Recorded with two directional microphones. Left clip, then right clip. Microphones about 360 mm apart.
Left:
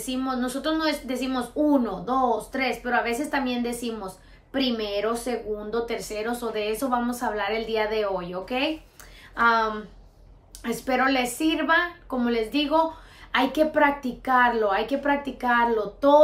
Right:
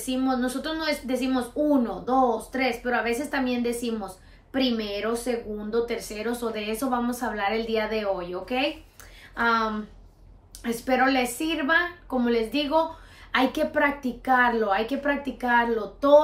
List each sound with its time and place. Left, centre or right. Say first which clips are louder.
0.0 s a woman's voice: right 2 dB; centre